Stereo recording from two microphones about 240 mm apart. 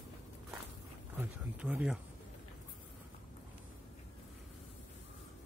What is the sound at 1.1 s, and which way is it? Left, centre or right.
Speech, centre.